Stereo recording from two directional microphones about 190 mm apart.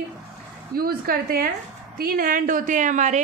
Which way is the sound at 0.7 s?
50° right (ahead or behind).